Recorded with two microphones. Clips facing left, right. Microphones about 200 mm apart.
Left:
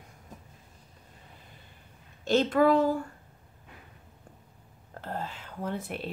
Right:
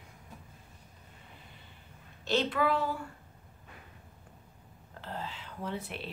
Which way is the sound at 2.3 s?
45° left (ahead or behind).